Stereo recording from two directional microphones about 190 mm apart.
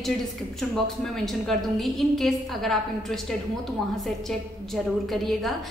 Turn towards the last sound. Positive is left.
turn(degrees=0)  # may be behind; listen again after turning